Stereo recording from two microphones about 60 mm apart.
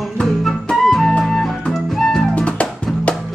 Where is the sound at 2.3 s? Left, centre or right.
Left.